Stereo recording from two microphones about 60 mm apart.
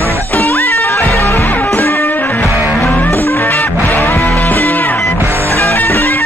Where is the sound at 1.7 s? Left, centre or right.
Left.